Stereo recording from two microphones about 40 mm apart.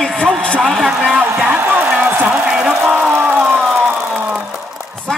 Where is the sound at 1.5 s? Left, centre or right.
Right.